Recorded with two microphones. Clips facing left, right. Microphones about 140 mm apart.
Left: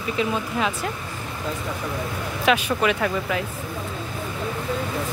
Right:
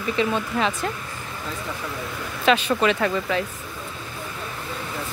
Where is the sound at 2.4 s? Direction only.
10° left (ahead or behind).